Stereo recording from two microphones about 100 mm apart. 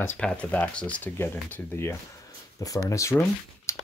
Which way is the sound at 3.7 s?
30° left (ahead or behind).